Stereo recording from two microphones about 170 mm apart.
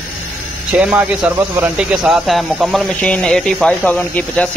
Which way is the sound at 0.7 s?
5° right (ahead or behind).